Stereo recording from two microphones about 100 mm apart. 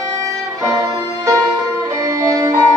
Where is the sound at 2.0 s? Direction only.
35° right (ahead or behind).